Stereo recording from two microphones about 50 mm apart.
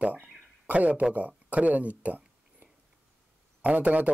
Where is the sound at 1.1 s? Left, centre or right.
Right.